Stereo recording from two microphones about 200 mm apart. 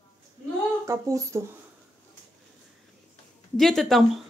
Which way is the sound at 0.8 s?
15° right (ahead or behind).